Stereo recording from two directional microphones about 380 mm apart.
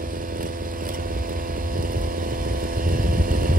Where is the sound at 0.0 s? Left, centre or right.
Right.